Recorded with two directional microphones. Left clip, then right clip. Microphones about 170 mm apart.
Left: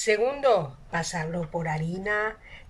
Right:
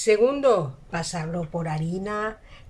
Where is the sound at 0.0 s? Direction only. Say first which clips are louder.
Right 4 dB; 15° right (ahead or behind).